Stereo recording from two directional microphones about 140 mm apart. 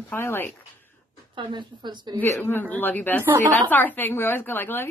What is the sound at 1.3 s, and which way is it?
Speech, 35° right (ahead or behind).